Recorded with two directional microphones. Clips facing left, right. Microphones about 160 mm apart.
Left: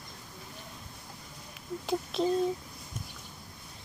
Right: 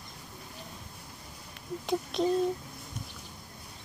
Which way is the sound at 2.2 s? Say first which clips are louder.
Right 1 dB; centre (ahead or behind).